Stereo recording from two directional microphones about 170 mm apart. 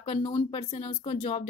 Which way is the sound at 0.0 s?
35° left (ahead or behind).